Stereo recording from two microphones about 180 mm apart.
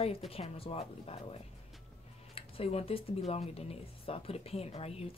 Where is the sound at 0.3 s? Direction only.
30° left (ahead or behind).